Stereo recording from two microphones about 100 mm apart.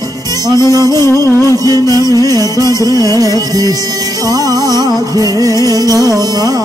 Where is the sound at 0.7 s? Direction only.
40° right (ahead or behind).